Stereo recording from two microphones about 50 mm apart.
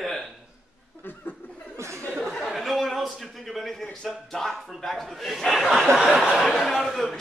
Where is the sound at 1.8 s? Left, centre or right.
Right.